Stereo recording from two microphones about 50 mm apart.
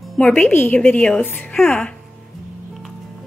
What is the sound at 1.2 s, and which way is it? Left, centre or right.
Speech, left.